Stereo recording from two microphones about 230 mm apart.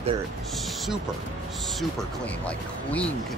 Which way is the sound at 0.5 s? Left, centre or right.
Centre.